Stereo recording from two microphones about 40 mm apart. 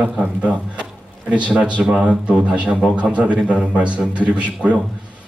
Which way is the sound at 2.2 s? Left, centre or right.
Right.